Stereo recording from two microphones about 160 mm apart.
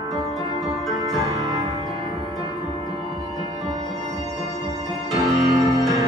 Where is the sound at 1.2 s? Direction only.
20° right (ahead or behind).